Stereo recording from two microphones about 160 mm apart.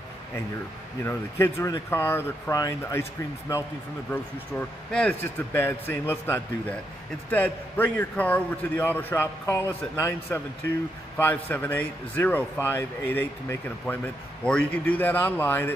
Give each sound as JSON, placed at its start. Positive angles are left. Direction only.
{"t": 1.0, "sound": "a man's voice", "side_deg": 20}